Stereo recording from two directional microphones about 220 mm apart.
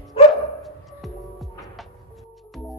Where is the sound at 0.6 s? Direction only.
Centre (ahead or behind).